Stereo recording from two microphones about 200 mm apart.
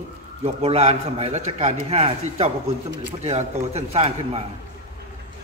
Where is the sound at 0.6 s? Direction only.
30° right (ahead or behind).